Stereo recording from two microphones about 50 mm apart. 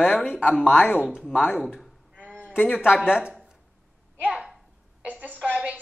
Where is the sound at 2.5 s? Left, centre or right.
Left.